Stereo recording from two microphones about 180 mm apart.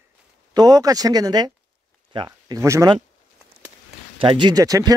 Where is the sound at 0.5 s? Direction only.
20° right (ahead or behind).